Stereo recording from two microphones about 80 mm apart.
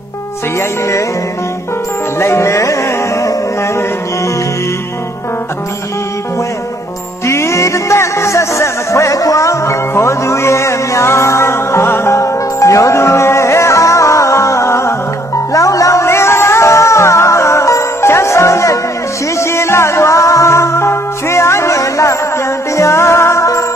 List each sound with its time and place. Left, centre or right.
0.6 s music: left
2.1 s music: left
7.2 s music: left